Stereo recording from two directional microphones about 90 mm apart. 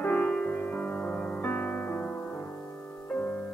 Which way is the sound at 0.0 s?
15° left (ahead or behind).